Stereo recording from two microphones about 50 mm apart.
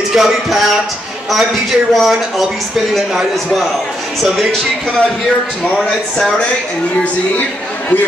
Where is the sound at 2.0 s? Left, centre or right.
Centre.